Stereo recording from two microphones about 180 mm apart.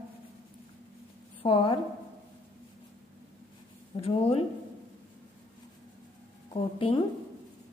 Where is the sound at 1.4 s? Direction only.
30° left (ahead or behind).